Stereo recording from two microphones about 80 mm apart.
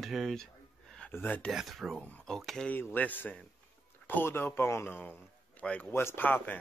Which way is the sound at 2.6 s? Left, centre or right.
Left.